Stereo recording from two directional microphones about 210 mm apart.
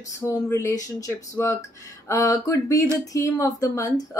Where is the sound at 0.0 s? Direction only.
15° left (ahead or behind).